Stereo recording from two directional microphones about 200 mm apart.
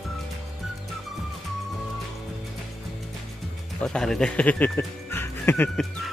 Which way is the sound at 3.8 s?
5° left (ahead or behind).